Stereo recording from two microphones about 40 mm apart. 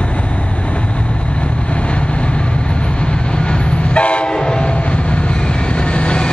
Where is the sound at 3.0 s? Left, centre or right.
Left.